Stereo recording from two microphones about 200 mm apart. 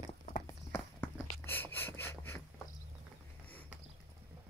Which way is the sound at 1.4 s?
10° left (ahead or behind).